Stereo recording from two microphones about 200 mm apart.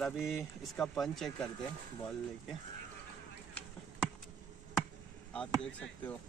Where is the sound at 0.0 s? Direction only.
Centre (ahead or behind).